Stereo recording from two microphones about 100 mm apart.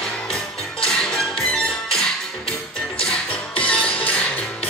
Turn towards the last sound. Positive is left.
turn(degrees=15)  # may be behind; listen again after turning